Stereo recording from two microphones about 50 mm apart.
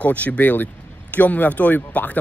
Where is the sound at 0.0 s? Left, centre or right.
Left.